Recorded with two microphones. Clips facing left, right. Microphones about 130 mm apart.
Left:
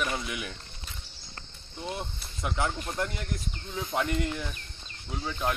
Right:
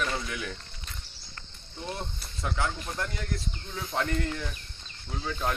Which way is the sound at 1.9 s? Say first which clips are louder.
Left 1 dB; 20° left (ahead or behind).